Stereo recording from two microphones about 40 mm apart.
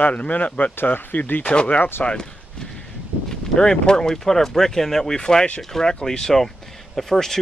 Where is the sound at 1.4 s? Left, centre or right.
Left.